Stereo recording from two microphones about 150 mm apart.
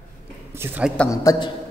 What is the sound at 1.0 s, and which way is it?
Speech, 20° left (ahead or behind).